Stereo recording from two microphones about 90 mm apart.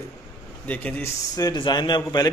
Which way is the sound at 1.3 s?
50° left (ahead or behind).